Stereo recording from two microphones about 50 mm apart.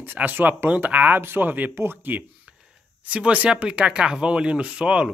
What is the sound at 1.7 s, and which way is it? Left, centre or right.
Speech, right.